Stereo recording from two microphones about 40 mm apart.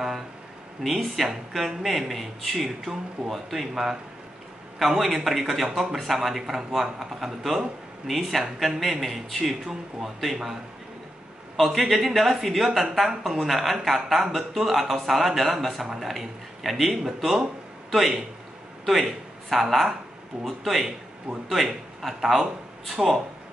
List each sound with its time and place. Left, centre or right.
0.8 s speech: centre
8.1 s speech: centre
11.6 s speech: centre
21.3 s a man's voice: right
22.0 s speech: centre